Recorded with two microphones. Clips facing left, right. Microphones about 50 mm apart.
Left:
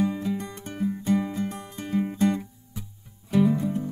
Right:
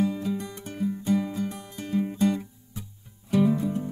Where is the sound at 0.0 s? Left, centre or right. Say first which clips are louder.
Left 1 dB; left.